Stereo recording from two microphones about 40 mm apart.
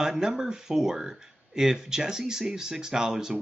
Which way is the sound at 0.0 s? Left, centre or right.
Centre.